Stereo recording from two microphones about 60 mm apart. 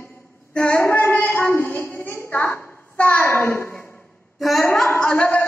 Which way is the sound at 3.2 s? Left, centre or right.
Left.